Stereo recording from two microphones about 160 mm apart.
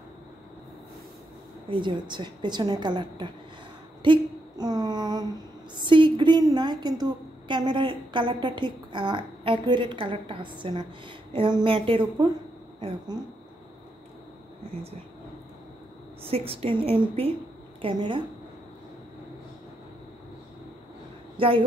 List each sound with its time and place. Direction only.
1.7 s a woman's voice: 30° right (ahead or behind)
4.0 s a sound: 30° right (ahead or behind)
5.9 s a woman's voice: 30° right (ahead or behind)
16.3 s a woman's voice: 35° right (ahead or behind)
21.4 s speech: 35° right (ahead or behind)